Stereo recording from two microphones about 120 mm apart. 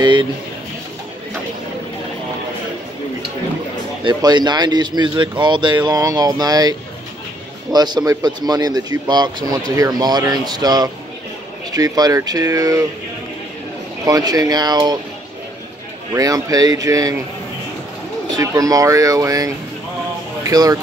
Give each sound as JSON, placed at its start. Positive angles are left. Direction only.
{"t": 0.0, "sound": "a sound", "side_deg": -40}
{"t": 4.0, "sound": "a man's voice", "side_deg": -35}
{"t": 14.0, "sound": "a man's voice", "side_deg": -30}
{"t": 16.2, "sound": "a man's voice", "side_deg": -30}
{"t": 18.3, "sound": "speech", "side_deg": -30}